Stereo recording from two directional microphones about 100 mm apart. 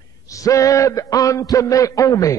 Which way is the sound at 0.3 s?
35° left (ahead or behind).